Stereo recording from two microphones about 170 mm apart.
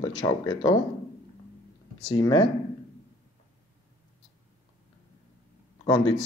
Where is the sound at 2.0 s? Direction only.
25° left (ahead or behind).